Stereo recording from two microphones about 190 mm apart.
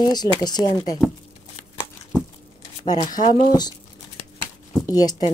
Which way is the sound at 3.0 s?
40° left (ahead or behind).